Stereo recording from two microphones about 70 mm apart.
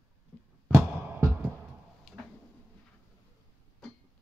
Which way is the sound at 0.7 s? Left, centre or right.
Right.